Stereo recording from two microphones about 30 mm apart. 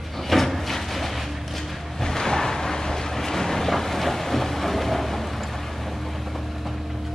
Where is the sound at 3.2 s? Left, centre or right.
Centre.